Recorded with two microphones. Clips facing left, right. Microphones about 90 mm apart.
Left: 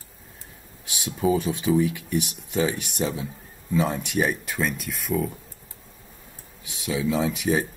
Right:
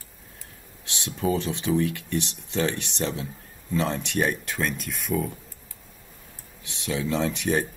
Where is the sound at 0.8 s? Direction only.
10° left (ahead or behind).